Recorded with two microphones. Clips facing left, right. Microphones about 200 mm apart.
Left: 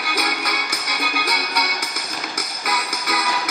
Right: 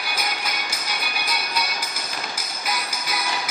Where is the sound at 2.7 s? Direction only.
65° left (ahead or behind).